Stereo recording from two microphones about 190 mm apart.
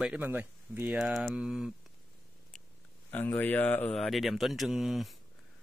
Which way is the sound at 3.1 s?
10° left (ahead or behind).